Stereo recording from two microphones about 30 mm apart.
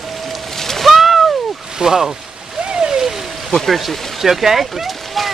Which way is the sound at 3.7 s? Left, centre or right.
Centre.